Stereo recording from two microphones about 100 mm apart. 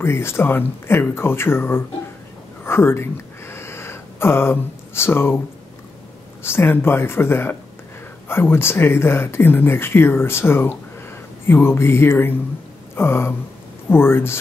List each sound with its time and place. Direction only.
0.0 s speech: 25° left (ahead or behind)
2.6 s a sound: 25° left (ahead or behind)
6.4 s speech: 25° left (ahead or behind)